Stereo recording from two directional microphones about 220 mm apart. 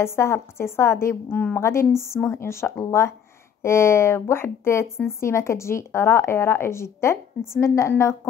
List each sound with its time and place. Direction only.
0.0 s speech: 10° left (ahead or behind)